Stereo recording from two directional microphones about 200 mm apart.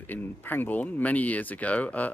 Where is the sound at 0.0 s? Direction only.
10° left (ahead or behind).